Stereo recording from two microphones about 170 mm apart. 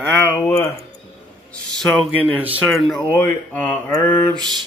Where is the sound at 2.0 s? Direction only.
10° right (ahead or behind).